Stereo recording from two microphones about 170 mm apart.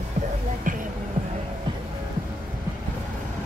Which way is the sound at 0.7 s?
50° right (ahead or behind).